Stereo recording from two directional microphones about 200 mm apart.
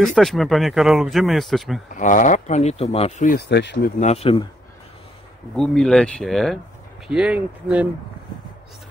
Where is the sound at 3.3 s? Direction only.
55° left (ahead or behind).